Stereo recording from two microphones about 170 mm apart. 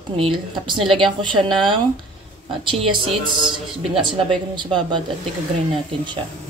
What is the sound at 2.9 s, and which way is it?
Speech, 30° right (ahead or behind).